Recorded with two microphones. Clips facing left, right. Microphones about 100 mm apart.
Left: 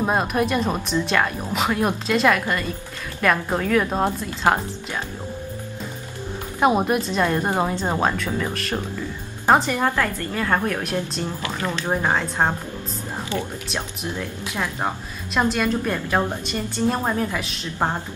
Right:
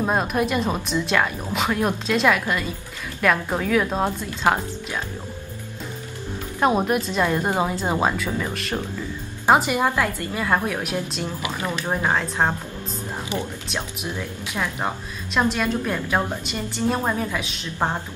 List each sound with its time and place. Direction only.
0.0 s speech: centre (ahead or behind)
6.6 s speech: 5° left (ahead or behind)
9.5 s a woman's voice: 10° right (ahead or behind)
11.9 s speech: 5° left (ahead or behind)
13.3 s a woman's voice: 15° right (ahead or behind)
14.5 s speech: centre (ahead or behind)